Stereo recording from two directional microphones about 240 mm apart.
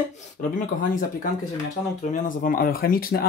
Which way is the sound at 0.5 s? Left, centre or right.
Left.